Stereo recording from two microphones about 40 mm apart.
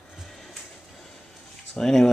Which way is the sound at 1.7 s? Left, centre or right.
Centre.